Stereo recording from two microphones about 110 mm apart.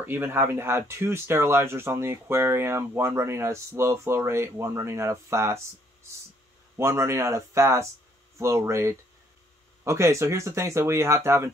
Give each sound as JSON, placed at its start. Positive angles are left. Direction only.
{"t": 0.0, "sound": "speech", "side_deg": -20}
{"t": 6.8, "sound": "speech", "side_deg": -25}